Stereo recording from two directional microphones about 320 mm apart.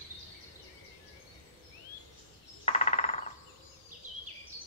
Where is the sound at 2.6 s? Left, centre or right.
Centre.